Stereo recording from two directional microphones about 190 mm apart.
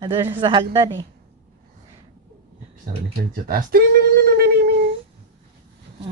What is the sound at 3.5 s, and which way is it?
Speech, 50° right (ahead or behind).